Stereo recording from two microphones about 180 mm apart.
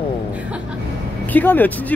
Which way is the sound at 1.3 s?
10° left (ahead or behind).